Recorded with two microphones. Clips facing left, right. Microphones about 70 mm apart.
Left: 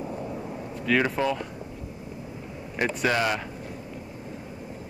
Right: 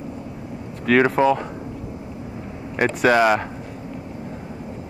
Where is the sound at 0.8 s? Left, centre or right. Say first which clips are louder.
Right 7 dB; right.